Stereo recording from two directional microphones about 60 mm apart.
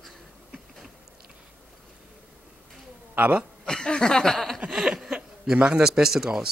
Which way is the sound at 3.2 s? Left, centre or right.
Right.